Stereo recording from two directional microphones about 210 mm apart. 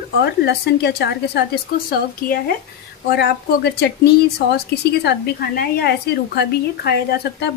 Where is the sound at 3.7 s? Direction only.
50° left (ahead or behind).